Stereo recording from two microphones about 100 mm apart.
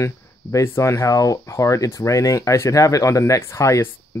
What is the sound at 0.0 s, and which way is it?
Speech, 30° left (ahead or behind).